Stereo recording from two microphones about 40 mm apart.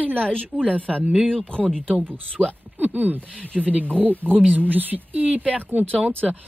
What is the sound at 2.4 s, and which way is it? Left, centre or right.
Speech, right.